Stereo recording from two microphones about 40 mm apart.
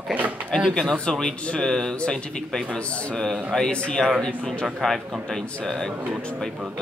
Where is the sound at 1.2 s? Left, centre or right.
Centre.